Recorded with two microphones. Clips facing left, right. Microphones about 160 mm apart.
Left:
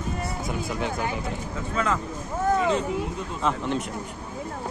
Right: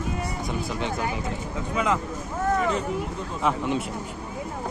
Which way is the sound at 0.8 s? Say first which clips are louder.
Even; centre (ahead or behind).